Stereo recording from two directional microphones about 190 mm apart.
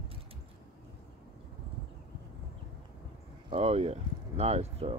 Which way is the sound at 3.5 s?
35° right (ahead or behind).